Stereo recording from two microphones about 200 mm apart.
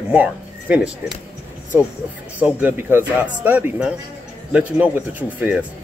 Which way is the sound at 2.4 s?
10° right (ahead or behind).